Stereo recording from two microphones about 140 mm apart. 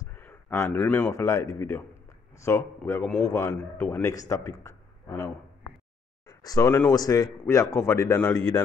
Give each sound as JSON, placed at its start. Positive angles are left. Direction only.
{"t": 0.1, "sound": "speech", "side_deg": 15}
{"t": 6.2, "sound": "a sound", "side_deg": 25}
{"t": 6.7, "sound": "speech", "side_deg": 15}